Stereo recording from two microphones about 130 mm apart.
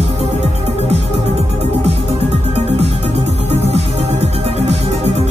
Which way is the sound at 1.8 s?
55° right (ahead or behind).